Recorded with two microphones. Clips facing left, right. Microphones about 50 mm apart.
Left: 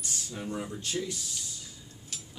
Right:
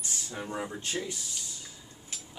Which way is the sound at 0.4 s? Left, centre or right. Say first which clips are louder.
Right 1 dB; right.